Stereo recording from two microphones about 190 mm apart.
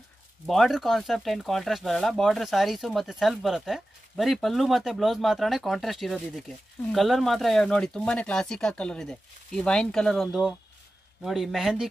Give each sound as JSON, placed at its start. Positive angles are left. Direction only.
{"t": 0.5, "sound": "speech", "side_deg": 0}